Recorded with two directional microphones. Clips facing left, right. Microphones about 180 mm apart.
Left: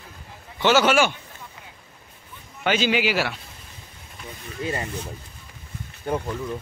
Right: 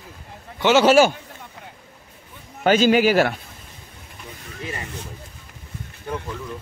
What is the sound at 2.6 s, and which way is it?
Speech, 45° right (ahead or behind).